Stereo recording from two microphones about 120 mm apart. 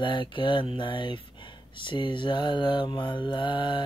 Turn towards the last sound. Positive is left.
turn(degrees=40)  # may be behind; listen again after turning